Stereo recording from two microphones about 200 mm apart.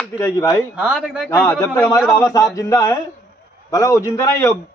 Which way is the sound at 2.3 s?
15° left (ahead or behind).